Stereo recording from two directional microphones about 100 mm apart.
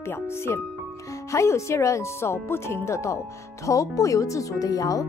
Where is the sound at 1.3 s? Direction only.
30° left (ahead or behind).